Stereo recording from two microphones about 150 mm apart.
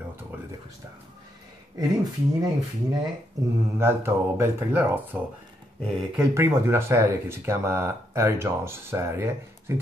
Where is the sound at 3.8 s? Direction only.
15° right (ahead or behind).